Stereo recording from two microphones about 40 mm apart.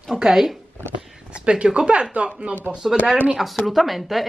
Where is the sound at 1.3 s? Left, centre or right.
Right.